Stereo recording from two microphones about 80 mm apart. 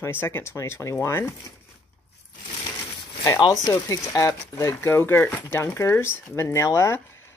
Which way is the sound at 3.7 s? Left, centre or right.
Left.